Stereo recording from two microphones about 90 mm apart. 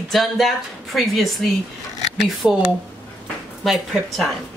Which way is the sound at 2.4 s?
10° right (ahead or behind).